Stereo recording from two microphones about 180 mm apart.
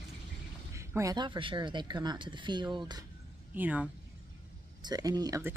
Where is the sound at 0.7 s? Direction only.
15° right (ahead or behind).